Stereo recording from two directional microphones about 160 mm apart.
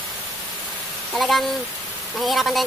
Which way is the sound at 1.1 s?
Centre (ahead or behind).